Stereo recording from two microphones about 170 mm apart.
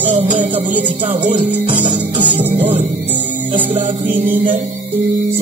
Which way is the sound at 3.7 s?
45° right (ahead or behind).